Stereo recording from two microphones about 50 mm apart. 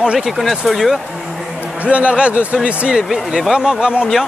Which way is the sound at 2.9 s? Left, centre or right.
Centre.